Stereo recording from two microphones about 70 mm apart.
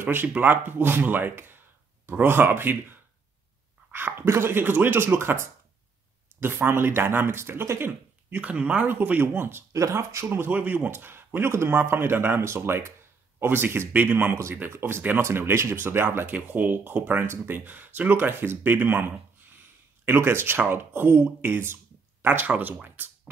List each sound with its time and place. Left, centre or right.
0.0 s speech: right
8.3 s speech: right
8.8 s speech: right
9.8 s speech: right
10.3 s speech: right